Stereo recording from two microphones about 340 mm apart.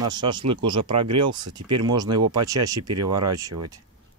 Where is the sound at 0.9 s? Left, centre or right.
Right.